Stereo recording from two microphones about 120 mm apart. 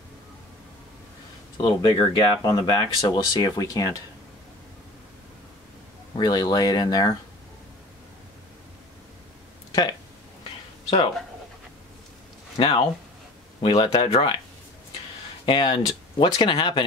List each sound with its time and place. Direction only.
1.6 s speech: 35° left (ahead or behind)
6.1 s speech: 35° left (ahead or behind)
12.5 s speech: 50° left (ahead or behind)
15.4 s speech: 40° left (ahead or behind)